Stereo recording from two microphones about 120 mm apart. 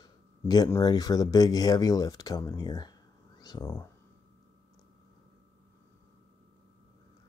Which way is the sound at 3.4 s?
35° left (ahead or behind).